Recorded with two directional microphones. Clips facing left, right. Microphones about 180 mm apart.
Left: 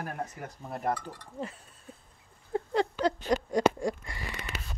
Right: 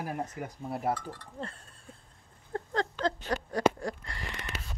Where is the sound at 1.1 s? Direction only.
10° left (ahead or behind).